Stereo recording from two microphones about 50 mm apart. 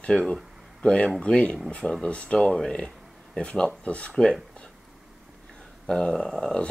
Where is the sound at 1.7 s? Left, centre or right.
Centre.